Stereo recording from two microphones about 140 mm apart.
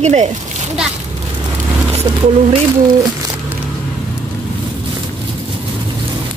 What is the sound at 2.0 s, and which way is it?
Speech, 35° right (ahead or behind).